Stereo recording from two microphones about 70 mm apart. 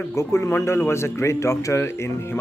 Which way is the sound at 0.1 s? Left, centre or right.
Left.